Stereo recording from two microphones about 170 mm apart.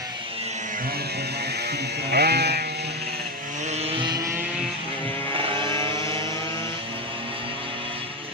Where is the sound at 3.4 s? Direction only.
45° right (ahead or behind); by 4.7 s 5° right (ahead or behind).